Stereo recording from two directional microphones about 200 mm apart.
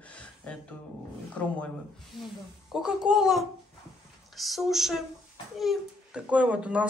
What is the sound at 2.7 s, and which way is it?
A child's voice, centre (ahead or behind).